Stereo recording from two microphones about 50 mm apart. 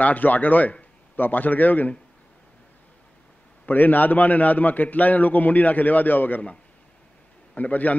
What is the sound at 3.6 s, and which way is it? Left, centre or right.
A man's voice, left.